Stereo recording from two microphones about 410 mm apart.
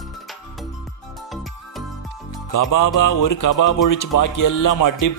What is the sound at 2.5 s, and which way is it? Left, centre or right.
Speech, left.